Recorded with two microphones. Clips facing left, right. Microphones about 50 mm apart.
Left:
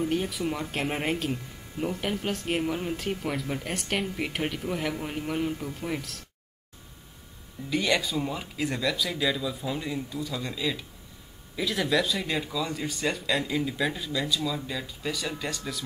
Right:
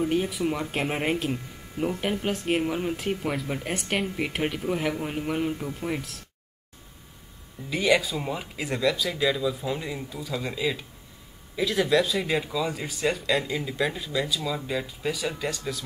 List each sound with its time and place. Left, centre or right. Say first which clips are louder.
0.1 s speech: right 3 dB; centre
7.7 s speech: right 3 dB; centre
14.4 s speech: right 2 dB; centre
15.1 s speech: right 3 dB; centre